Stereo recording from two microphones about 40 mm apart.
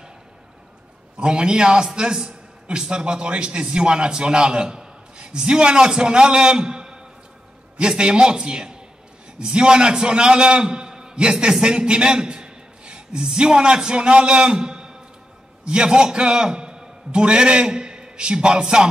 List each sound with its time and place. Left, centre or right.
1.1 s a man's voice: right